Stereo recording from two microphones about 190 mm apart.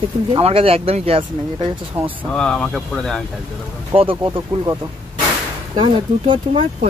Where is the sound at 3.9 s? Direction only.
30° right (ahead or behind).